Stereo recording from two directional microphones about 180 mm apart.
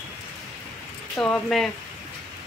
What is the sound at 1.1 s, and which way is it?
Speech, 5° left (ahead or behind).